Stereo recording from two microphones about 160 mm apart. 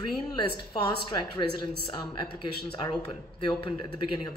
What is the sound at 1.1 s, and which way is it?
Speech, 30° left (ahead or behind).